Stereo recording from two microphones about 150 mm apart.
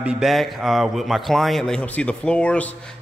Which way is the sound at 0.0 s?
5° right (ahead or behind).